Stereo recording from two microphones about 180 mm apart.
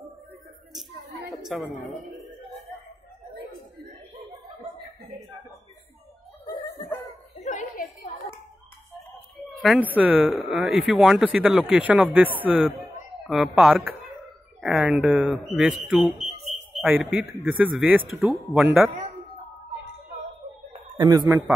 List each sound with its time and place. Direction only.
1.4 s speech: centre (ahead or behind)
7.3 s a sound: 40° left (ahead or behind)
9.6 s a man's voice: centre (ahead or behind)
21.0 s a man's voice: 20° right (ahead or behind)